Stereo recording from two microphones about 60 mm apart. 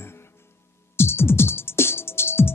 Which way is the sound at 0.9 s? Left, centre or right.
Left.